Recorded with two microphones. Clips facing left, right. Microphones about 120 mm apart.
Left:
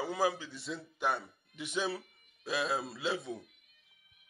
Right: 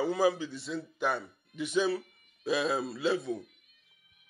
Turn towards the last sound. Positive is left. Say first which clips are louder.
# right 6 dB
turn(degrees=15)  # may be behind; listen again after turning